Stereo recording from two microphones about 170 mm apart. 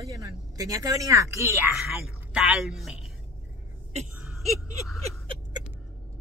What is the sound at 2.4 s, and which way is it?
Speech, 5° right (ahead or behind).